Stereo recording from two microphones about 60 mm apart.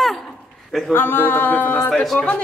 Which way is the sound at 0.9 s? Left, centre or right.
Left.